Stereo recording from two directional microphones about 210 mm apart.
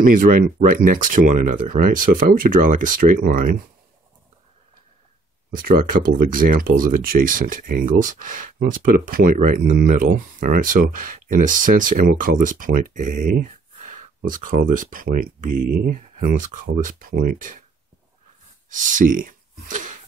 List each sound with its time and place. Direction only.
0.0 s speech: 40° right (ahead or behind)
5.5 s speech: 45° right (ahead or behind)
18.7 s speech: 40° right (ahead or behind)